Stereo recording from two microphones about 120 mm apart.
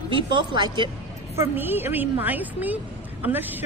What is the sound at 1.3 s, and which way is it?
Speech, 15° right (ahead or behind).